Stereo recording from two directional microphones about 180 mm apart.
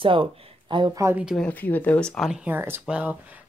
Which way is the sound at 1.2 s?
Centre (ahead or behind).